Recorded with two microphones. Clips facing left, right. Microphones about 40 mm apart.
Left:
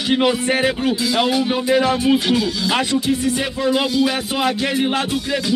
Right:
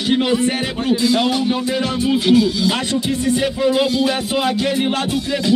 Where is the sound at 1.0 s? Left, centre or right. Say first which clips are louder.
Right 1 dB; centre.